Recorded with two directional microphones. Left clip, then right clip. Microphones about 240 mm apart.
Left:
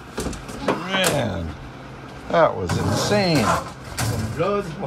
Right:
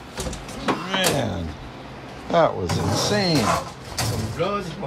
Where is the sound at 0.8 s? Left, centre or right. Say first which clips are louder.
Left 1 dB; centre.